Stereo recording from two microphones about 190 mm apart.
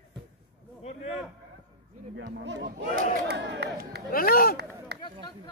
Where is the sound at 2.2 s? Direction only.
65° right (ahead or behind).